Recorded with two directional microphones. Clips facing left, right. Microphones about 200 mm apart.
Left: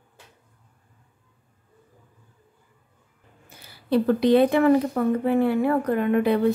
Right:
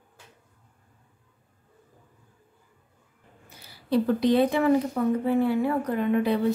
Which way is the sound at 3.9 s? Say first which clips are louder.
Left 3 dB; 65° left (ahead or behind).